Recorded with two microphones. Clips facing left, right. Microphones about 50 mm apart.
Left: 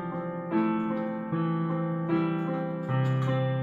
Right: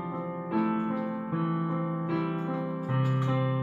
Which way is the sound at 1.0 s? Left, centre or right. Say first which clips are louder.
Left 1 dB; centre.